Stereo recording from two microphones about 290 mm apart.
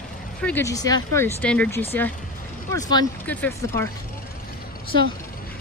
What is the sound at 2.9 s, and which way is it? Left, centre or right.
Speech, centre.